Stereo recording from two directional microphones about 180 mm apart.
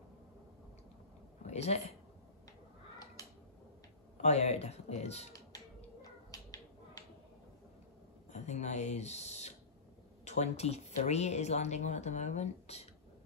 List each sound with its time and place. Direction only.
1.5 s speech: 35° left (ahead or behind)
4.2 s speech: 35° left (ahead or behind)
6.3 s finger snapping: 20° left (ahead or behind)
8.3 s speech: 40° left (ahead or behind)